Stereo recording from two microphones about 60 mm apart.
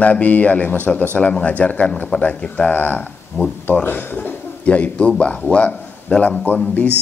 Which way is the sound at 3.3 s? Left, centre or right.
Left.